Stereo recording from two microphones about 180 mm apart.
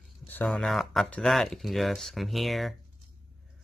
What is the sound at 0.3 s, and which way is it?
Speech, 5° left (ahead or behind).